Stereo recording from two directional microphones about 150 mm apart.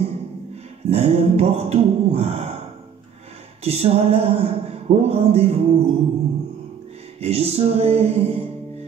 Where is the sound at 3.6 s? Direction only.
40° right (ahead or behind).